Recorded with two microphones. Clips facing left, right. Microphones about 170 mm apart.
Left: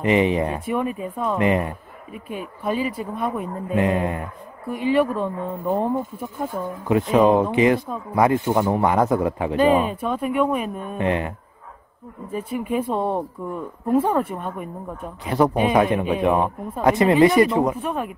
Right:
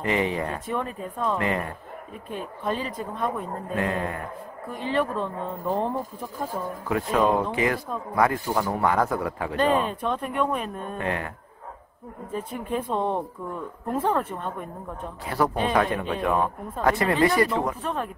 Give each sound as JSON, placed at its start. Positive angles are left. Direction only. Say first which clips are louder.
{"t": 0.0, "sound": "speech", "louder": "left 6 dB", "side_deg": 20}
{"t": 9.6, "sound": "speech", "louder": "left 5 dB", "side_deg": 10}
{"t": 11.0, "sound": "speech", "louder": "left 7 dB", "side_deg": 20}
{"t": 12.3, "sound": "speech", "louder": "left 5 dB", "side_deg": 10}